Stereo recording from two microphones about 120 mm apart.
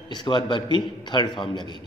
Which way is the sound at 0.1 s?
35° left (ahead or behind).